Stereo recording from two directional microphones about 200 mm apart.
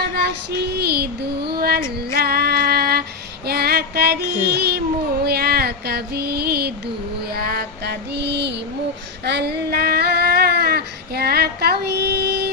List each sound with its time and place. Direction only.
0.0 s female singing: 55° right (ahead or behind)
9.2 s child singing: 55° right (ahead or behind)